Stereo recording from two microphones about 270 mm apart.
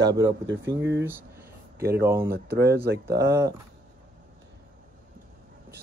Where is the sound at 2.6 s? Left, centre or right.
Right.